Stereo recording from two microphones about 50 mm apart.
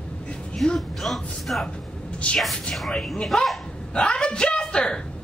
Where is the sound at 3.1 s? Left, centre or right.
Centre.